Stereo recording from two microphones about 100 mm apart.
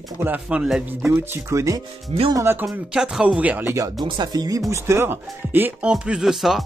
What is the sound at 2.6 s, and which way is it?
Speech, 5° right (ahead or behind).